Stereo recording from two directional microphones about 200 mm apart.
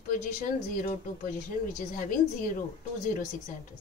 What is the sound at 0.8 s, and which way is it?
Speech, 45° left (ahead or behind).